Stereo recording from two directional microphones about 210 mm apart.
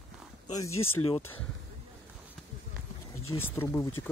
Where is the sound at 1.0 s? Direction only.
25° left (ahead or behind).